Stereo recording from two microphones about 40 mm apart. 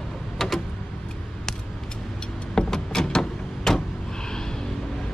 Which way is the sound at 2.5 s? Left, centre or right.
Centre.